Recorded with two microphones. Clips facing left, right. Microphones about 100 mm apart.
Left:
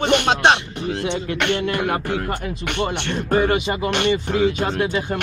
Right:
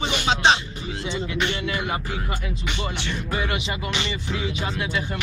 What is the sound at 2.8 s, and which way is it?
Speech, 45° left (ahead or behind).